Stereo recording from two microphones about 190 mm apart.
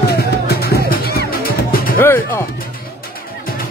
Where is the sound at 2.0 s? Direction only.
10° left (ahead or behind).